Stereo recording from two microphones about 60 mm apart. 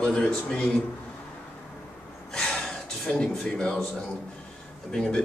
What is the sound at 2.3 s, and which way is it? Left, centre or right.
Gasp, centre.